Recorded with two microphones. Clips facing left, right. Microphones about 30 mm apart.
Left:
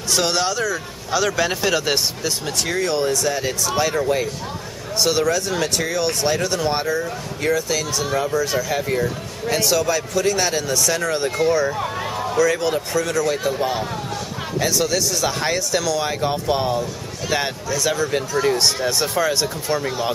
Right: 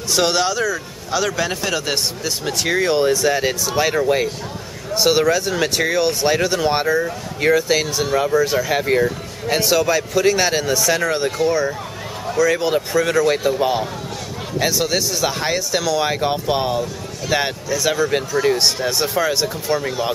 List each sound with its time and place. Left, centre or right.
0.1 s speech: centre
2.4 s speech: centre
4.9 s speech: centre
12.5 s speech: centre
13.5 s speech: centre
17.3 s speech: centre